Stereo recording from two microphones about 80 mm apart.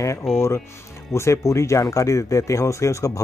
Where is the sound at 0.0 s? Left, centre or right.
Left.